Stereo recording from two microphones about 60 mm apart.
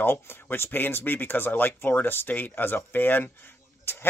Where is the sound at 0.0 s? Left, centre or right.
Left.